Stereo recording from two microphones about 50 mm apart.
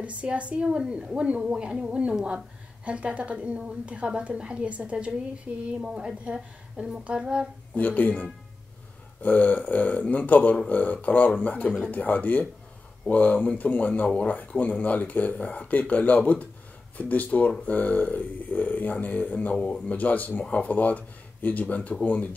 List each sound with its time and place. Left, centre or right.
0.0 s a woman's voice: right
5.5 s a woman's voice: right
5.8 s a woman's voice: centre
7.7 s speech: left
19.5 s speech: left